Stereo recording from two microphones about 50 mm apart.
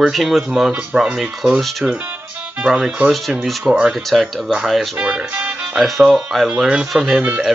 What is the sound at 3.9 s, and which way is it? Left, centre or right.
Speech, centre.